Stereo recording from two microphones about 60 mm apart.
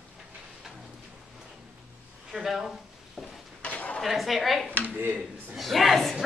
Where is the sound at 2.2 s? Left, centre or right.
Centre.